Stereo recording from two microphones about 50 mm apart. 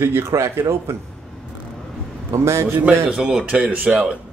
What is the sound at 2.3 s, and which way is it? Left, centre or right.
Speech, right.